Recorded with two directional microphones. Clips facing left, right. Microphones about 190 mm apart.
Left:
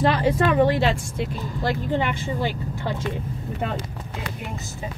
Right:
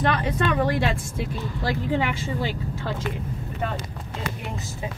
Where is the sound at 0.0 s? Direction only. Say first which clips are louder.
Left 4 dB; 30° left (ahead or behind).